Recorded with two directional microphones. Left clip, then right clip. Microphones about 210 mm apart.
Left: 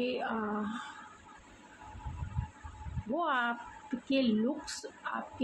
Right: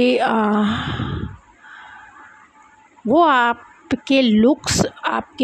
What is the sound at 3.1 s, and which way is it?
A woman's voice, 55° right (ahead or behind).